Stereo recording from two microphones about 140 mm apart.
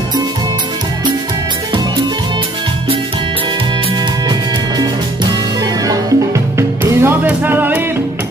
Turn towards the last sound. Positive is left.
turn(degrees=-15)  # may be behind; listen again after turning